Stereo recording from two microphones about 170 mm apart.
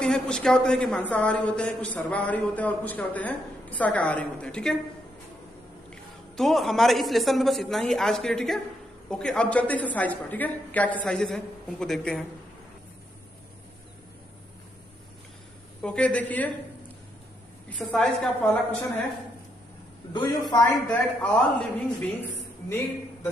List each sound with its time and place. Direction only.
0.0 s a man's voice: 5° left (ahead or behind)
5.9 s a man's voice: centre (ahead or behind)
15.8 s a man's voice: 5° left (ahead or behind)
17.6 s a man's voice: 5° left (ahead or behind)
20.1 s a man's voice: 25° left (ahead or behind)
20.7 s a man's voice: 5° left (ahead or behind)